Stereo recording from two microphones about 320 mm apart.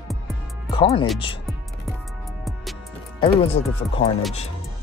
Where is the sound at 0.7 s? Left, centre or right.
Centre.